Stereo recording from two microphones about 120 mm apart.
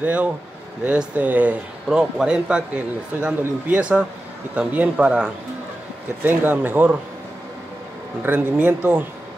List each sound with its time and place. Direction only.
0.0 s speech: 10° right (ahead or behind)
8.2 s speech: 15° right (ahead or behind)